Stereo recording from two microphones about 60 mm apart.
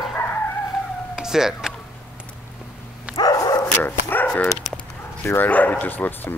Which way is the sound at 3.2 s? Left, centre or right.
Left.